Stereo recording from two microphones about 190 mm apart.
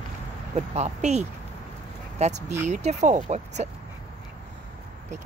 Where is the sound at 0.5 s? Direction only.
35° right (ahead or behind).